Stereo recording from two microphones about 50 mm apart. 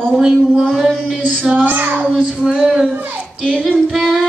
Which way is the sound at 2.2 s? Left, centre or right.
Centre.